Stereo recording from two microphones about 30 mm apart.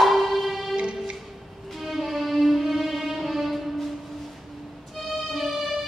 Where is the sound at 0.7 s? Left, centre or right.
Right.